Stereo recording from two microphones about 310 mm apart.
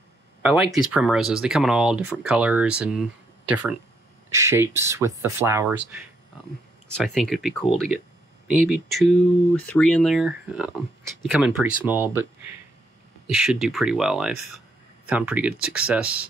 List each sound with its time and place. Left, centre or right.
0.4 s speech: centre
7.0 s speech: centre
13.3 s speech: centre